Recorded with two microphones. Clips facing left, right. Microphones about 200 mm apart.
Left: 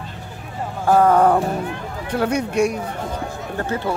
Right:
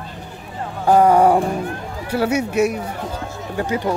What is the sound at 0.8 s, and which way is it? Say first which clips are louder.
Speech: right 2 dB; 15° right (ahead or behind).